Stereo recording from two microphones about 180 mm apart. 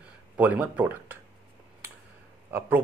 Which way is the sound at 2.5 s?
10° right (ahead or behind).